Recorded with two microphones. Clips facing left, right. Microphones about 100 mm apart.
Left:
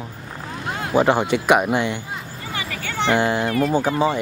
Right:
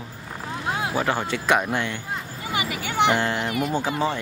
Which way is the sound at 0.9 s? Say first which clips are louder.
Left 12 dB; 20° left (ahead or behind).